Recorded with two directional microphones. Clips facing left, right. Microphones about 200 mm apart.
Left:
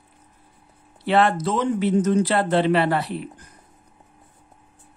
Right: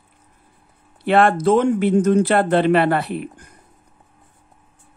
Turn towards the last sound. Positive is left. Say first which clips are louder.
# right 3 dB
turn(degrees=-55)  # may be behind; listen again after turning